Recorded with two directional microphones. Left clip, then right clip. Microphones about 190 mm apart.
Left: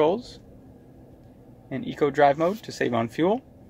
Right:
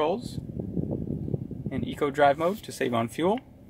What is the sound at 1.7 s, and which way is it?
Speech, 25° left (ahead or behind).